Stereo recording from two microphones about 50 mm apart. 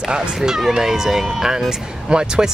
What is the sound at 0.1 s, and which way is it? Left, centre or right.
Speech, centre.